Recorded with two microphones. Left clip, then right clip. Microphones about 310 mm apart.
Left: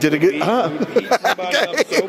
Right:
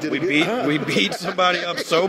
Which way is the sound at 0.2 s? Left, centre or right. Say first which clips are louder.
Left 2 dB; left.